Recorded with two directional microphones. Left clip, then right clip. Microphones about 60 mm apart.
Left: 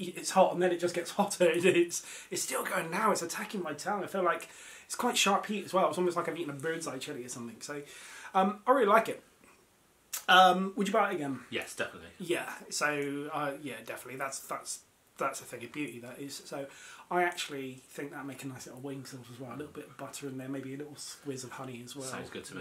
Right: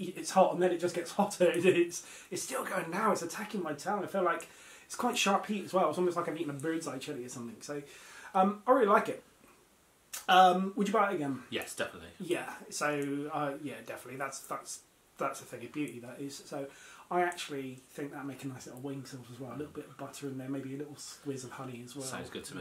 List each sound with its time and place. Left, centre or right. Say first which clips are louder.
0.0 s speech: left 1 dB; left
10.1 s speech: left 1 dB; left
11.5 s speech: left 2 dB; centre
12.2 s speech: left 1 dB; left
20.0 s speech: left 1 dB; centre
22.0 s speech: even; centre